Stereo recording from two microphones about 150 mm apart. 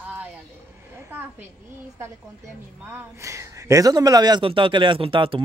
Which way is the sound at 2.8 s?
15° right (ahead or behind).